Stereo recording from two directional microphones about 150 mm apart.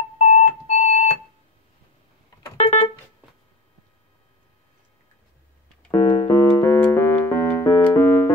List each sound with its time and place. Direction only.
0.2 s music: 50° left (ahead or behind)
2.5 s music: 45° left (ahead or behind)
5.8 s keyboard: 15° left (ahead or behind)